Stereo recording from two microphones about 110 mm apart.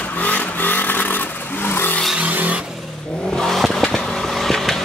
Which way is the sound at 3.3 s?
5° left (ahead or behind).